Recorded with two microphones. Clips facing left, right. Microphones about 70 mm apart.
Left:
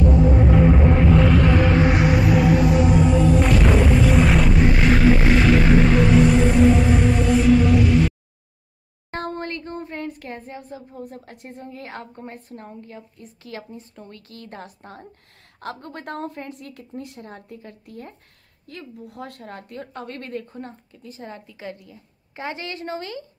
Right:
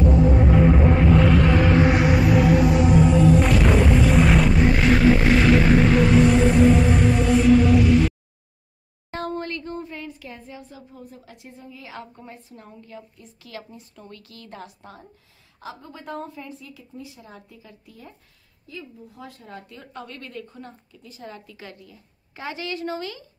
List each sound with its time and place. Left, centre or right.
0.0 s music: centre
9.1 s speech: left
15.6 s a woman's voice: left